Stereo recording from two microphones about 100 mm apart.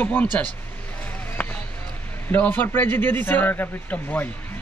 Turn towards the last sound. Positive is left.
turn(degrees=15)  # may be behind; listen again after turning